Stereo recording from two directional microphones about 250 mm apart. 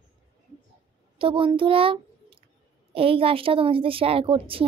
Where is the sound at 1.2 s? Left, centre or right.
Right.